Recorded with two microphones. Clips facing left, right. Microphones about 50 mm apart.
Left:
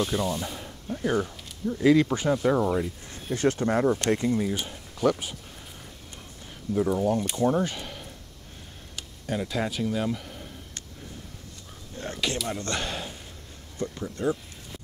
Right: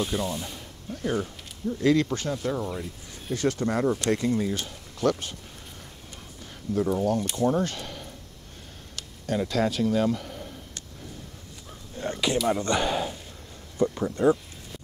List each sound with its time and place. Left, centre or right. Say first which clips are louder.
0.0 s speech: left 2 dB; centre; by 2.9 s left
3.3 s speech: left 2 dB; left
4.1 s speech: even; centre
4.4 s speech: even; centre
6.7 s speech: even; centre
12.0 s speech: right 5 dB; centre
13.7 s speech: right 7 dB; right